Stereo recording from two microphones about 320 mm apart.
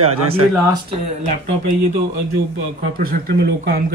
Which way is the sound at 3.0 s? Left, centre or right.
Right.